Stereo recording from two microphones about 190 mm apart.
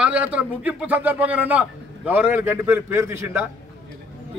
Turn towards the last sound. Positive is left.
turn(degrees=-10)  # may be behind; listen again after turning